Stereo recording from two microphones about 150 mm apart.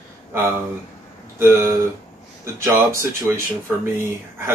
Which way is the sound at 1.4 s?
15° right (ahead or behind).